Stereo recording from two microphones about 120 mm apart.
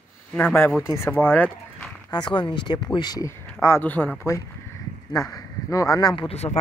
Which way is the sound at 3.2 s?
25° left (ahead or behind).